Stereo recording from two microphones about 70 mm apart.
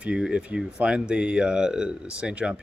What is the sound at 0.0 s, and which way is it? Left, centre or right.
Speech, centre.